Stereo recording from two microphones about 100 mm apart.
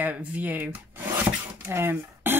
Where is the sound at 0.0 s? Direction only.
15° right (ahead or behind).